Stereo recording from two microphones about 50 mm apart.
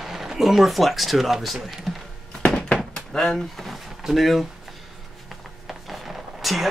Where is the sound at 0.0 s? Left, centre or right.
Centre.